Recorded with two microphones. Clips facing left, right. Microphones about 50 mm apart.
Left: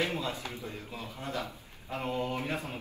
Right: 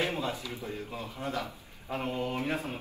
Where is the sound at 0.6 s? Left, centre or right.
Right.